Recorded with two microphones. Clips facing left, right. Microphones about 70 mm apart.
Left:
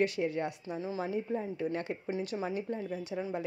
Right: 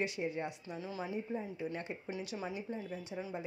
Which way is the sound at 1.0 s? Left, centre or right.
Left.